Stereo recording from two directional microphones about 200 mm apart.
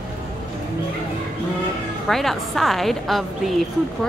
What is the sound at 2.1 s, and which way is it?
Speech, centre (ahead or behind).